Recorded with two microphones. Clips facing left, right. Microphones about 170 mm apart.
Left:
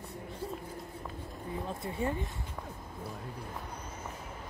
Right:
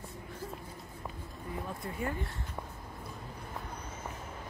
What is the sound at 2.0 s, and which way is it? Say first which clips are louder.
Speech: left 3 dB; 25° left (ahead or behind).